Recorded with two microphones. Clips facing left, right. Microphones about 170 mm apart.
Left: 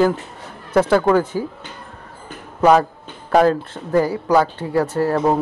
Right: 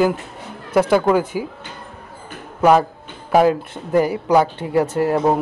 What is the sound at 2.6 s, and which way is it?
A man's voice, 10° right (ahead or behind).